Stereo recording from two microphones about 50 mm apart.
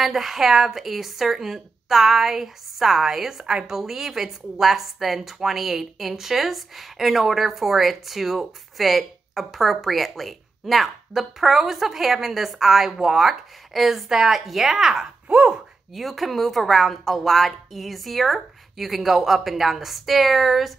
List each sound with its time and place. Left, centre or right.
0.0 s speech: centre
15.2 s speech: centre
15.9 s speech: centre